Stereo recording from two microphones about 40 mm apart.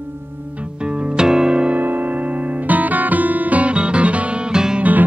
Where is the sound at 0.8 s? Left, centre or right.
Right.